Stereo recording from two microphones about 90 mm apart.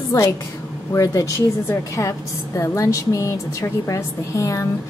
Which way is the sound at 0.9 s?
40° left (ahead or behind).